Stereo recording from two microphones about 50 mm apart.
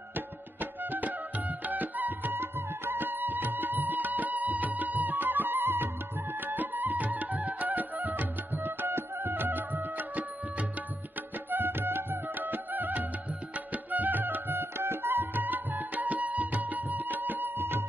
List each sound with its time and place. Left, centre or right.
0.1 s music: right
11.5 s music: right